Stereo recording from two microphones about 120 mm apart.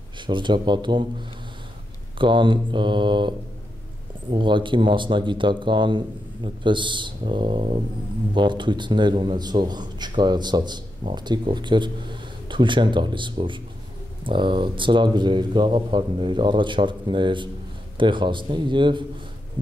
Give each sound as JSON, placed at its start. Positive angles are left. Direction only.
{"t": 0.3, "sound": "speech", "side_deg": -40}
{"t": 2.1, "sound": "speech", "side_deg": -40}